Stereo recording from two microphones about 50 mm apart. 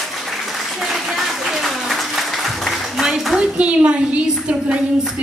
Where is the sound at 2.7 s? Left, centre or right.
Centre.